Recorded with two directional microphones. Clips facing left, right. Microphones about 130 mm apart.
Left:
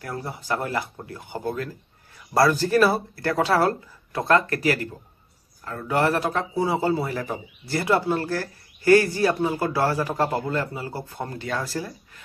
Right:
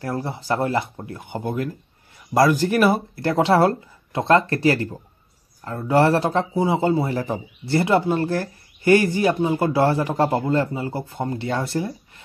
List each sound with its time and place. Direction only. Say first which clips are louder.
0.0 s a man's voice: right 5 dB; 30° right (ahead or behind)